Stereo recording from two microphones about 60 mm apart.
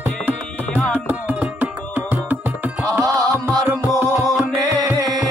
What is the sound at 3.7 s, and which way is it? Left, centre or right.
Music, right.